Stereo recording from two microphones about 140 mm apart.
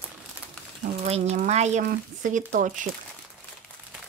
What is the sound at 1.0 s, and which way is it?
Speech, 50° right (ahead or behind).